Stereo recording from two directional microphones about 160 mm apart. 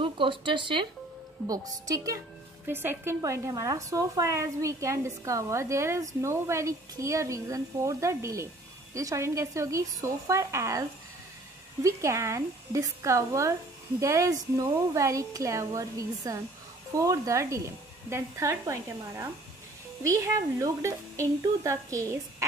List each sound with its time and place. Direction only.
0.0 s speech: 30° right (ahead or behind)
2.6 s a woman's voice: 15° right (ahead or behind)